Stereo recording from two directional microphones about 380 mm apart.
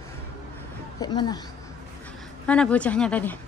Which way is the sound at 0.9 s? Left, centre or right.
Centre.